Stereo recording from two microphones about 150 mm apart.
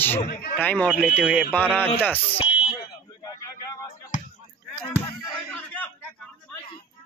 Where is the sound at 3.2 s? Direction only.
25° left (ahead or behind).